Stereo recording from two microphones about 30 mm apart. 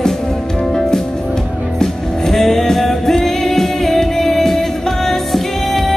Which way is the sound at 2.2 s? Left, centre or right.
Centre.